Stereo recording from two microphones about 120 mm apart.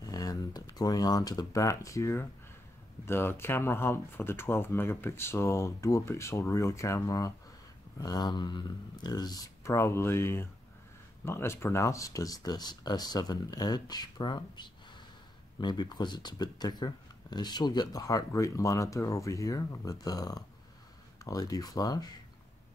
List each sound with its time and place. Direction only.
0.0 s speech: 30° left (ahead or behind)